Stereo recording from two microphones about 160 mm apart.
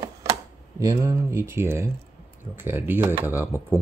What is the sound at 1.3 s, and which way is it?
Speech, 15° right (ahead or behind).